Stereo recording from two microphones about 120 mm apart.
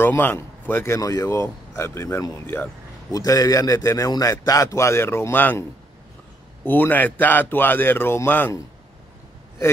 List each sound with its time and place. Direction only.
0.0 s speech: 15° left (ahead or behind)
3.1 s a man's voice: 30° left (ahead or behind)